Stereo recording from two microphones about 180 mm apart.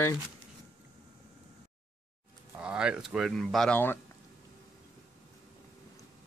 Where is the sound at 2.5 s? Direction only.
5° right (ahead or behind); by 4.0 s 10° left (ahead or behind).